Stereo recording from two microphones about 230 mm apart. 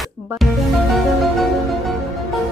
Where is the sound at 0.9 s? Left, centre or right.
Centre.